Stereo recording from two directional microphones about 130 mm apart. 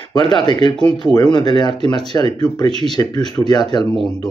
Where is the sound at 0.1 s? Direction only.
35° left (ahead or behind).